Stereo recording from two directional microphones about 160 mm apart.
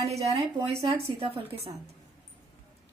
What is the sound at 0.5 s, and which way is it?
A woman's voice, 30° right (ahead or behind).